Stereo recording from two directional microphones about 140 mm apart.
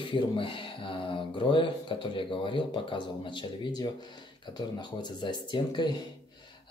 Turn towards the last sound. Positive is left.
turn(degrees=35)  # may be behind; listen again after turning